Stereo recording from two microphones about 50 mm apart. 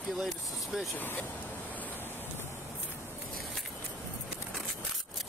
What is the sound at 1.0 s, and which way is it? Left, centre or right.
Speech, left.